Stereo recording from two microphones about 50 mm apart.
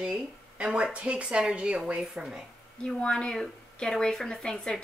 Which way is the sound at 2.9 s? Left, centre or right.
Centre.